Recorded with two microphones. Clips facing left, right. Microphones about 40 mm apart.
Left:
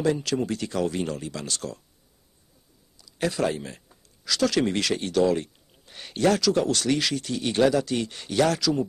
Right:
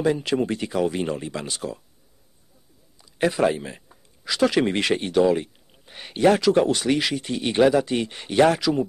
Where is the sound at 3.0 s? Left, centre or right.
Right.